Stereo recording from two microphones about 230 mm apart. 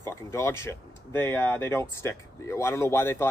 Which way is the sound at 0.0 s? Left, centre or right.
Centre.